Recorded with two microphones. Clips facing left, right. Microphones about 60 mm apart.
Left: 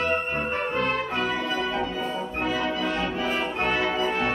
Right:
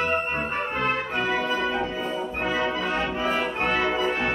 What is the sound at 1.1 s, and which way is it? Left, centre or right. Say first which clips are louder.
Brass instrument: right 2 dB; right.